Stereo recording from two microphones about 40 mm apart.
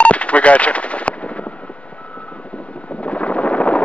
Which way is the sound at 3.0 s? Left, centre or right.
Left.